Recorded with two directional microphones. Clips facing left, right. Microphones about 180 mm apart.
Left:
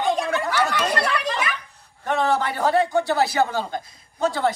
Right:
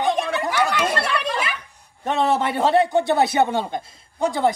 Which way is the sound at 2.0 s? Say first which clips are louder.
Right 1 dB; 25° right (ahead or behind).